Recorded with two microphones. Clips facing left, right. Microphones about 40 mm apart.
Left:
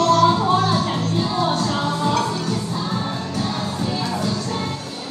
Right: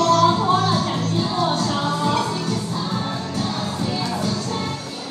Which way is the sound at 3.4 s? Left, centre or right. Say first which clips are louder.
Left 1 dB; left.